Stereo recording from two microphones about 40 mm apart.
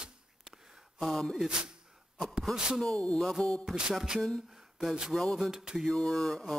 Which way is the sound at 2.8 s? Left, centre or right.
Centre.